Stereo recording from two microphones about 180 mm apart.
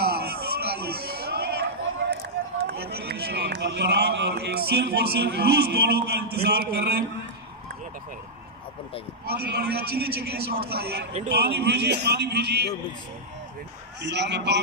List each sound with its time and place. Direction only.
0.0 s a sound: 60° right (ahead or behind)
2.6 s a man's voice: 60° right (ahead or behind)
9.2 s a man's voice: 60° right (ahead or behind)
14.0 s a man's voice: 75° right (ahead or behind)